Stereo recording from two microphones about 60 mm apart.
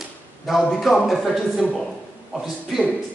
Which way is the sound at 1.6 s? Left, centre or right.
Centre.